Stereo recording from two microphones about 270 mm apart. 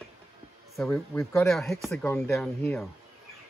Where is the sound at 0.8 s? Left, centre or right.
Centre.